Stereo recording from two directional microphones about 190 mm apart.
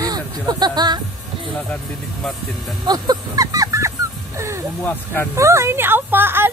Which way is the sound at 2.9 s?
20° right (ahead or behind).